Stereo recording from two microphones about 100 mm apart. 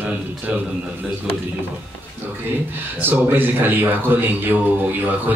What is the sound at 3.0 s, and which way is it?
A man's voice, 20° right (ahead or behind).